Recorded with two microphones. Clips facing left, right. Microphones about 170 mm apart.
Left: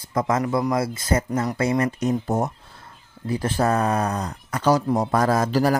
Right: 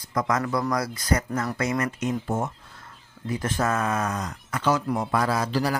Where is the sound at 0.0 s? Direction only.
25° left (ahead or behind).